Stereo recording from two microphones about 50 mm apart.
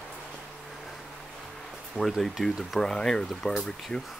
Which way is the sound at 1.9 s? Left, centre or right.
Centre.